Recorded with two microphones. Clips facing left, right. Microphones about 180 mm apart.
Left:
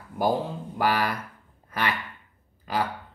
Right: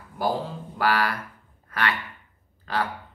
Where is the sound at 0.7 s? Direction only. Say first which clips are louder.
Right 1 dB; 20° left (ahead or behind).